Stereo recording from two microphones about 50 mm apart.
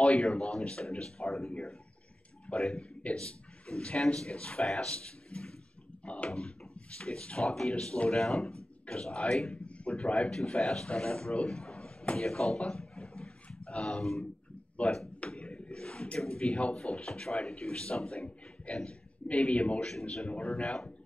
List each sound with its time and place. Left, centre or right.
0.0 s speech: centre
2.4 s a man's voice: centre
10.3 s speech: centre
14.8 s speech: left
19.8 s speech: centre
20.2 s speech: left
20.6 s speech: centre